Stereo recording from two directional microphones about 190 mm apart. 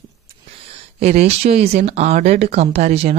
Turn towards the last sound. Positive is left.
turn(degrees=-35)  # may be behind; listen again after turning